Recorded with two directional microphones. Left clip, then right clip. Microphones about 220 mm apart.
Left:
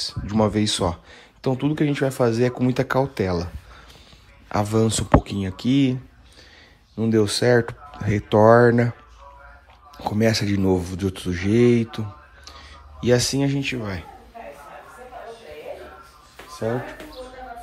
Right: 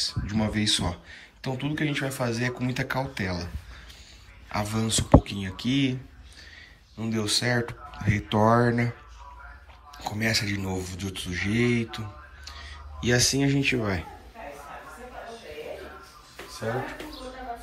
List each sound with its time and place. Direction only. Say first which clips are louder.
0.0 s speech: left 7 dB; 20° left (ahead or behind)
4.5 s speech: left 8 dB; 30° left (ahead or behind)
7.0 s speech: left 7 dB; 35° left (ahead or behind)
9.9 s speech: left 5 dB; 30° left (ahead or behind); by 14.0 s 10° left (ahead or behind)